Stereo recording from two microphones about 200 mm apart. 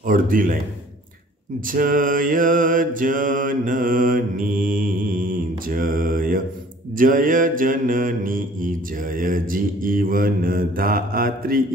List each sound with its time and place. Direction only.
0.0 s mantra: 45° right (ahead or behind)
1.7 s mantra: 45° right (ahead or behind)